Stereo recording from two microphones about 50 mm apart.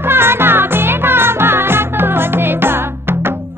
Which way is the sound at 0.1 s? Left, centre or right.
Right.